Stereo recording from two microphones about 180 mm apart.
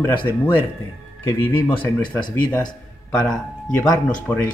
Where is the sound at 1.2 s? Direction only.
15° left (ahead or behind).